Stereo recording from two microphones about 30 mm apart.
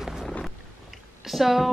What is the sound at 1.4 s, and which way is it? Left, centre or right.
Speech, centre.